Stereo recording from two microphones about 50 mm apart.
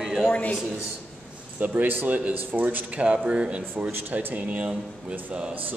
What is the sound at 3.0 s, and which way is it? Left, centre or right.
Speech, right.